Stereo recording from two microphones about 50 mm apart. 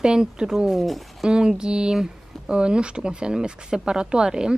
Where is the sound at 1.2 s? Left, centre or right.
Centre.